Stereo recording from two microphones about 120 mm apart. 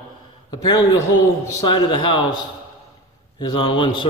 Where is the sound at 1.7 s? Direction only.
45° left (ahead or behind).